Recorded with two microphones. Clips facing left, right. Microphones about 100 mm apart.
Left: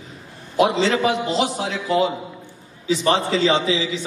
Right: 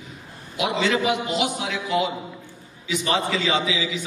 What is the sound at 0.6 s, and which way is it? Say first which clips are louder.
A man's voice: left 5 dB; 35° left (ahead or behind).